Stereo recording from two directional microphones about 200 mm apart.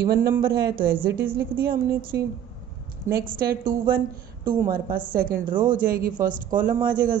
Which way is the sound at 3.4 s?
45° right (ahead or behind).